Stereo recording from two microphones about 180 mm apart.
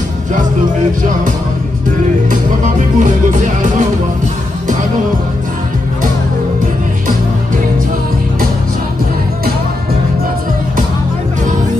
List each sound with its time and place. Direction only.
2.6 s music: 45° right (ahead or behind)